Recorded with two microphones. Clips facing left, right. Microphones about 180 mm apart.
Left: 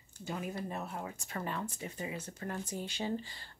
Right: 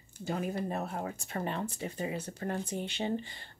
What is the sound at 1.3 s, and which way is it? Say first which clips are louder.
Speech: right 3 dB; 25° right (ahead or behind).